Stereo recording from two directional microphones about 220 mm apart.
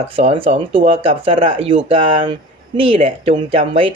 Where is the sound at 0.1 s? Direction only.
25° right (ahead or behind).